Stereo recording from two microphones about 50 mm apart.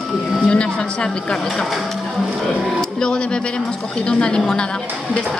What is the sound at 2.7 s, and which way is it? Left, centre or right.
Speech, centre.